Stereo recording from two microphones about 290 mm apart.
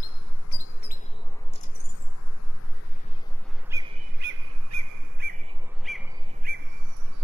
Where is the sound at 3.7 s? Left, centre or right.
Centre.